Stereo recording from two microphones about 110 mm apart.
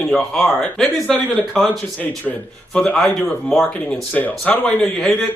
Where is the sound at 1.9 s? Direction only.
15° left (ahead or behind).